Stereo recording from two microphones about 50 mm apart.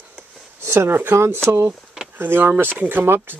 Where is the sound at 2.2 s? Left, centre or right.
Right.